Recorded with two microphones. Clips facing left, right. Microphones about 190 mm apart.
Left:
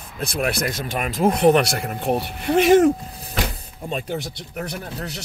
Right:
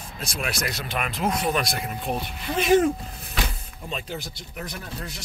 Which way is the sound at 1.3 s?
65° left (ahead or behind).